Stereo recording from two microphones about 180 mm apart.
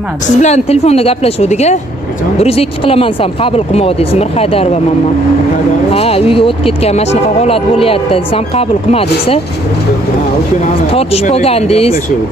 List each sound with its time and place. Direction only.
0.4 s speech: 35° left (ahead or behind)
5.9 s speech: 35° left (ahead or behind)
10.6 s speech: 35° left (ahead or behind)